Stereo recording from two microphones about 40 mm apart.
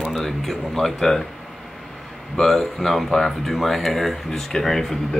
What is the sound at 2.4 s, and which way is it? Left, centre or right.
Speech, centre.